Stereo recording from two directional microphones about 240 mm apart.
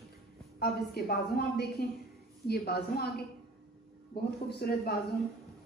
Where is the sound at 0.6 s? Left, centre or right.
Left.